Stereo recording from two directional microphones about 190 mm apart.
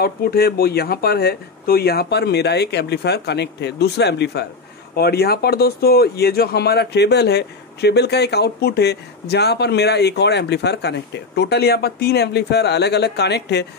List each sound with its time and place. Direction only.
0.0 s speech: 55° left (ahead or behind)